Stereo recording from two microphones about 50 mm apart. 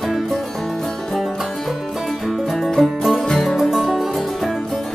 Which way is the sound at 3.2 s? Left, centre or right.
Centre.